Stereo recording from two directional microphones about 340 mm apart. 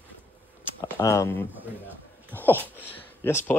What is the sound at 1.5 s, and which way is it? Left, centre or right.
Speech, centre.